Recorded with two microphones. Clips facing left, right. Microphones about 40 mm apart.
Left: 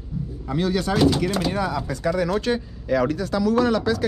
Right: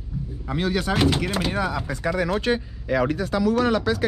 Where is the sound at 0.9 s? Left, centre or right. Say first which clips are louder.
Left 4 dB; right.